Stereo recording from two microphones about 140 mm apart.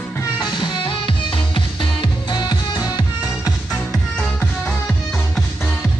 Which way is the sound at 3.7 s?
5° left (ahead or behind).